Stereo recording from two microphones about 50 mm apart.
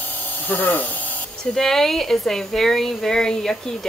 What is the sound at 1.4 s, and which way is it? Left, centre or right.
Speech, centre.